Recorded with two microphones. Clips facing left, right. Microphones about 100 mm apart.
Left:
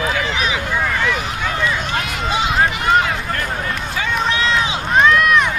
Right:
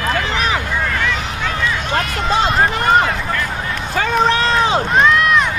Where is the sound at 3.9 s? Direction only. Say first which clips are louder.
Right 7 dB; 40° right (ahead or behind).